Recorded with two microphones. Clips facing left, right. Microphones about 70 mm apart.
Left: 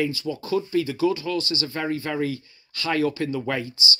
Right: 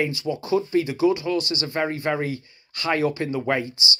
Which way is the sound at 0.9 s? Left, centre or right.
Centre.